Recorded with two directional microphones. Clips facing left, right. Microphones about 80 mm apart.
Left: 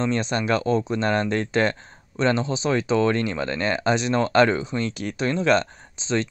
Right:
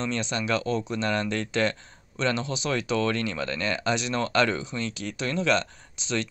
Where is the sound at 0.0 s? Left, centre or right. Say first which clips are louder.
Left 5 dB; left.